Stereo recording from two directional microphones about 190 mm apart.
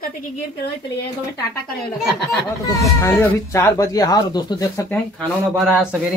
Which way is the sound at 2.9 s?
15° left (ahead or behind).